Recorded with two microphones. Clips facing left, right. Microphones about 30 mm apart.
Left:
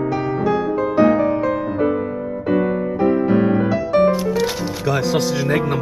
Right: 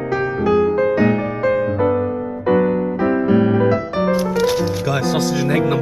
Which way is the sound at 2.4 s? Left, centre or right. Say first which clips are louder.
Right 3 dB; centre.